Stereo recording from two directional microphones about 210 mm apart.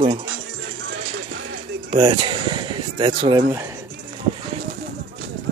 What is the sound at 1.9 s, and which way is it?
Speech, 20° right (ahead or behind).